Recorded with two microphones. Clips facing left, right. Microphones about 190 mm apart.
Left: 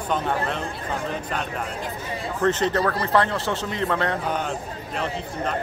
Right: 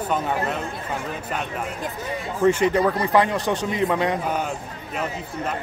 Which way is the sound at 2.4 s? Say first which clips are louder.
Right 3 dB; 10° right (ahead or behind).